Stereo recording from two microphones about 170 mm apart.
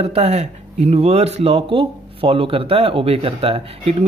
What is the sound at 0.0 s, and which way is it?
Speech, 40° right (ahead or behind).